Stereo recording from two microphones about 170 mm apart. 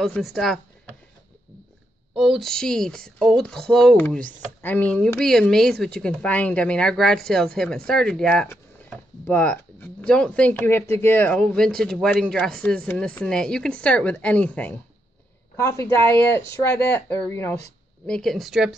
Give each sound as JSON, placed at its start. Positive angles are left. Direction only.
{"t": 0.0, "sound": "speech", "side_deg": 0}
{"t": 2.1, "sound": "speech", "side_deg": 0}
{"t": 18.0, "sound": "speech", "side_deg": 5}